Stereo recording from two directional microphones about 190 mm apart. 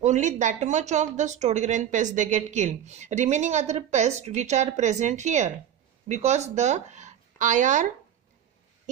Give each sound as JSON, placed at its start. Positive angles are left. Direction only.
{"t": 0.0, "sound": "speech", "side_deg": -40}